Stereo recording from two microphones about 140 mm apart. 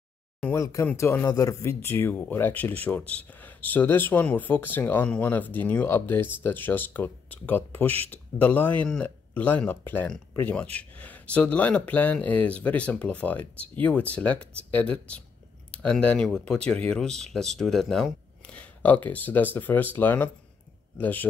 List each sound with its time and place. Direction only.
0.6 s speech: 20° left (ahead or behind)